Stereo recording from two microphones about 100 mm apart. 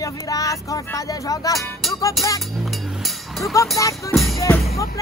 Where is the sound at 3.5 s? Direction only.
35° left (ahead or behind).